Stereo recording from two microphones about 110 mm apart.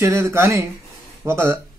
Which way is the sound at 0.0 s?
25° right (ahead or behind).